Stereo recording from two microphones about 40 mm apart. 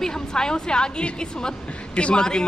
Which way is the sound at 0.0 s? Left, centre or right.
Centre.